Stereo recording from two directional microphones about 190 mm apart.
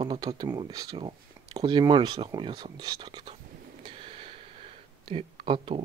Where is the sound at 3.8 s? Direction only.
30° right (ahead or behind).